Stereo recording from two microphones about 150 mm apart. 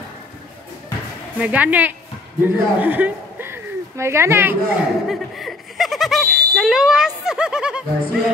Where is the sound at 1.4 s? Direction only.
10° right (ahead or behind).